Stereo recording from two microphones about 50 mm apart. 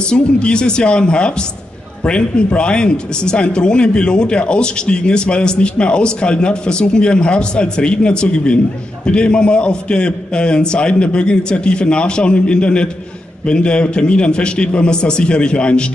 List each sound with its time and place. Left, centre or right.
0.0 s speech: centre